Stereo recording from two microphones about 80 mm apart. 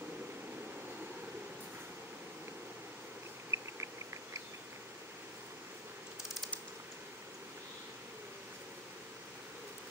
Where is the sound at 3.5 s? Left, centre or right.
Right.